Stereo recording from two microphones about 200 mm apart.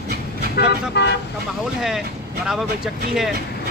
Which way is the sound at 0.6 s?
60° left (ahead or behind).